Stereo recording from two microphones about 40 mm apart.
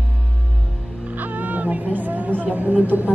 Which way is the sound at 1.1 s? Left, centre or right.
Right.